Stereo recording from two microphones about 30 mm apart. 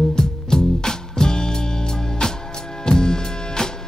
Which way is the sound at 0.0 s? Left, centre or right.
Centre.